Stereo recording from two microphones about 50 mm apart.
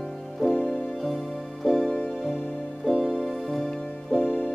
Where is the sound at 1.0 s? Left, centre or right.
Centre.